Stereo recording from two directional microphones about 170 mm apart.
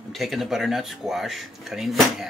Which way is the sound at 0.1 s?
Centre (ahead or behind).